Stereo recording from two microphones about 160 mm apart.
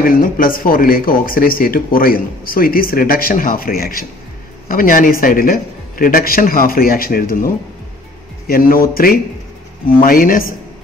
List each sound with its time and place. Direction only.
0.0 s speech: 60° left (ahead or behind)